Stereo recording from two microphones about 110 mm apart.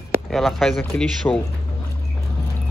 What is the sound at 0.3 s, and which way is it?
Speech, centre (ahead or behind).